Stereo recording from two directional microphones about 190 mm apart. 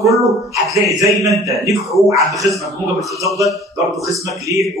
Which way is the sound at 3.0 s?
15° right (ahead or behind).